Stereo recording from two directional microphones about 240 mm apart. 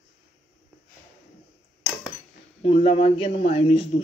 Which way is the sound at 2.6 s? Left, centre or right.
Left.